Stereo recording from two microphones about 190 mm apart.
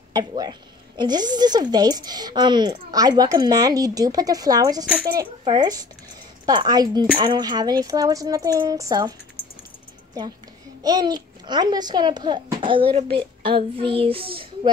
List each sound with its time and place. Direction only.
0.1 s a woman's voice: 20° right (ahead or behind)
10.8 s a woman's voice: 20° right (ahead or behind)